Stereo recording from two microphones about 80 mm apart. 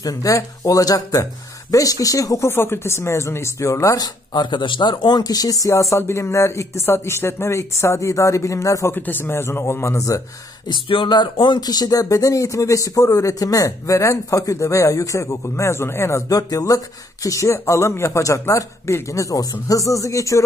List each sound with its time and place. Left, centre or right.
0.0 s speech: left
4.0 s speech: left
8.9 s speech: left
10.7 s speech: left